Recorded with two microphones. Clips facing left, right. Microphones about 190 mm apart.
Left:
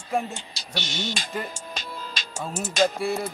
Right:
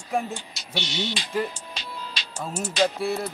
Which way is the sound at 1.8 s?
45° left (ahead or behind).